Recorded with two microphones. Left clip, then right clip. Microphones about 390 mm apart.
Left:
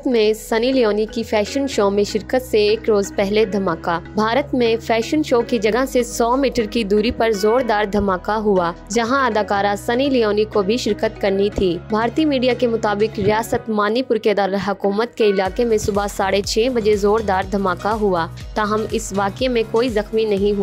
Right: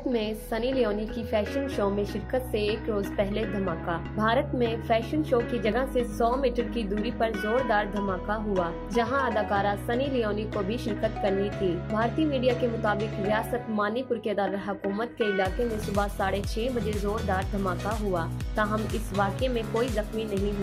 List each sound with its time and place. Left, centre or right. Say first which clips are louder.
0.1 s a woman's voice: left 16 dB; left